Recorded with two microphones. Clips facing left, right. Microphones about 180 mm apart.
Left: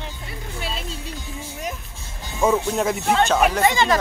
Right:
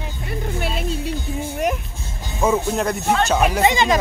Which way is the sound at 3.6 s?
20° right (ahead or behind).